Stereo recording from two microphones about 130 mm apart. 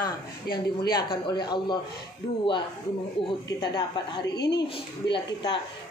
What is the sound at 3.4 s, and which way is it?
Speech, 30° left (ahead or behind).